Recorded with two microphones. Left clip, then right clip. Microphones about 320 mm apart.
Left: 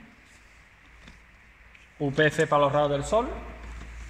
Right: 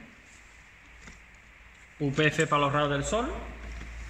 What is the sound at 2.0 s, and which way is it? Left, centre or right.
Speech, centre.